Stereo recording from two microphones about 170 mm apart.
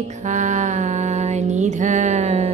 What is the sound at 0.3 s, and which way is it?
Music, 45° right (ahead or behind).